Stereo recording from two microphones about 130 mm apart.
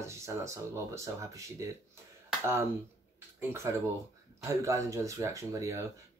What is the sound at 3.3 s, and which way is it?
Speech, 20° right (ahead or behind).